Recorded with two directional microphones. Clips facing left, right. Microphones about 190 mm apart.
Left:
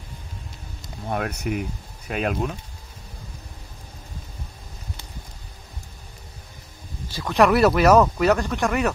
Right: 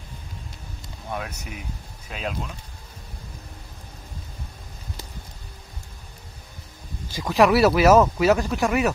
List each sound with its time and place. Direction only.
1.0 s speech: 55° left (ahead or behind)
7.2 s speech: 5° right (ahead or behind)